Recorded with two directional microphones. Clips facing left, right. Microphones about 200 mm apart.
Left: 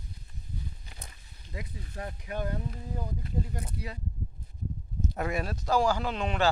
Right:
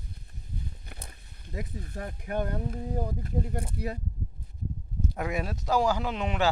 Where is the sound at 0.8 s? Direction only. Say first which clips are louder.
Right 3 dB; 55° right (ahead or behind).